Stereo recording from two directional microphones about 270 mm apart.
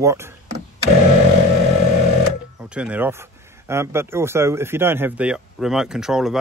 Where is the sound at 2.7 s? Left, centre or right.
Centre.